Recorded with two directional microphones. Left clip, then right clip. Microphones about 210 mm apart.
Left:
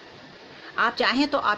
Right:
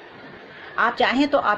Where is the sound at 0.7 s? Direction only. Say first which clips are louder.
Right 3 dB; 25° left (ahead or behind).